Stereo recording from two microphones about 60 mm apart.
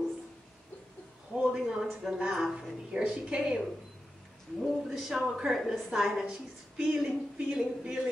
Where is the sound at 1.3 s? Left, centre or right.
Centre.